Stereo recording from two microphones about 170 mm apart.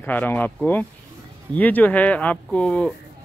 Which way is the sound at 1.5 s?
10° left (ahead or behind).